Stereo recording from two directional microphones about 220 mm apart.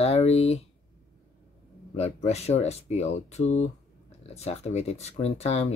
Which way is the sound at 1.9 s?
30° left (ahead or behind).